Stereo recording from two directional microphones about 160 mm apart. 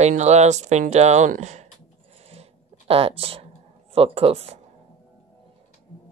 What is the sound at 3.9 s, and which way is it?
Speech, 35° right (ahead or behind).